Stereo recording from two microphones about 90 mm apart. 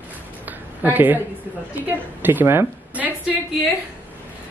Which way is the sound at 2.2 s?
20° right (ahead or behind).